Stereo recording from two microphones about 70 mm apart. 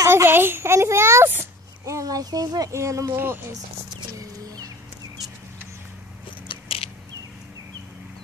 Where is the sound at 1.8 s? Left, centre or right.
Right.